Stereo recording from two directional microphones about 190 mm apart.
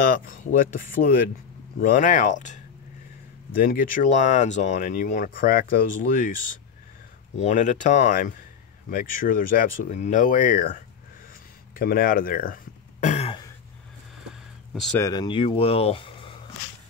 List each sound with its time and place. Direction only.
0.0 s speech: 45° left (ahead or behind)
7.3 s speech: 40° left (ahead or behind)
13.0 s throat clearing: 35° left (ahead or behind)
14.7 s a sound: centre (ahead or behind)
15.0 s speech: 20° left (ahead or behind)